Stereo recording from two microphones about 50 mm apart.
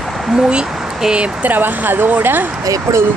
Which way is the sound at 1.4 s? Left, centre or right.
Right.